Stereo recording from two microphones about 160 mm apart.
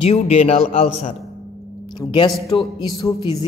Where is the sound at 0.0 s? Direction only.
40° left (ahead or behind).